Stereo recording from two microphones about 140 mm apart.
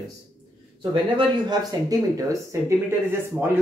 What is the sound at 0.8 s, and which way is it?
Speech, 35° right (ahead or behind).